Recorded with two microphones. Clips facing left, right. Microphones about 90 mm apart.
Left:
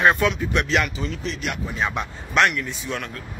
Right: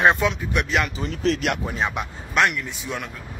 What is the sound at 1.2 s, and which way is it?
Speech, 85° right.